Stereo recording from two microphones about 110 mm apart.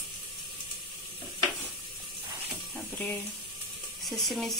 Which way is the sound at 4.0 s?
Centre (ahead or behind).